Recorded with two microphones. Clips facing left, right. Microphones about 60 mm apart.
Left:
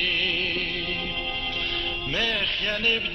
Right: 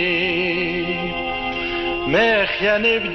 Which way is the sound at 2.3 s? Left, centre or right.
Right.